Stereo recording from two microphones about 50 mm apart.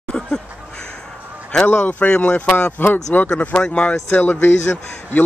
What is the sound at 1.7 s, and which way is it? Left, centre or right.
Speech, left.